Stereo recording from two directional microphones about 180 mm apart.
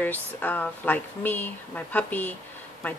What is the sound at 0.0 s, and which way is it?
Speech, 10° left (ahead or behind).